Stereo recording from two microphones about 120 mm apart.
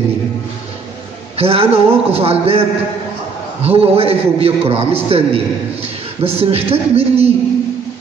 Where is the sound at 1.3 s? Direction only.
55° right (ahead or behind).